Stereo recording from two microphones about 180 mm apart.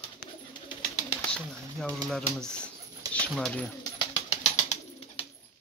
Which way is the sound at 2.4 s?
5° left (ahead or behind).